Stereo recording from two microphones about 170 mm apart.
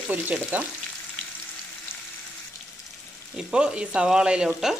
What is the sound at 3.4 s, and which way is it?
Speech, 5° right (ahead or behind).